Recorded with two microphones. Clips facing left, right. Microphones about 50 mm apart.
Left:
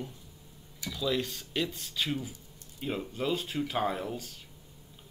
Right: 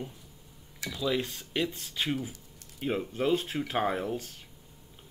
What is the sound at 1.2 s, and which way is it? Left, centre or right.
Speech, right.